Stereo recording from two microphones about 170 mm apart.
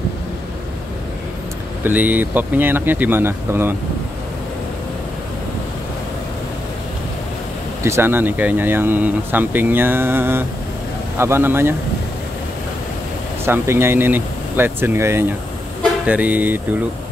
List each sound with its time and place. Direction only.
1.9 s speech: 10° right (ahead or behind)
7.8 s speech: 15° right (ahead or behind)
13.5 s speech: 15° right (ahead or behind)